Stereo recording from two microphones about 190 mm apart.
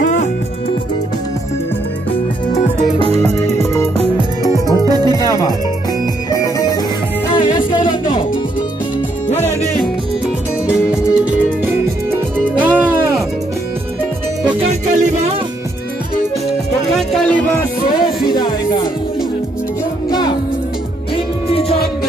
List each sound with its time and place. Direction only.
0.0 s music: 40° left (ahead or behind)
3.3 s music: 35° right (ahead or behind)
4.4 s music: 20° left (ahead or behind)
4.8 s music: 20° right (ahead or behind)
6.3 s music: 20° left (ahead or behind)
10.9 s music: 5° right (ahead or behind)
14.7 s music: 35° right (ahead or behind)
16.9 s music: 5° left (ahead or behind)
18.3 s music: 20° left (ahead or behind)
20.1 s music: 20° left (ahead or behind)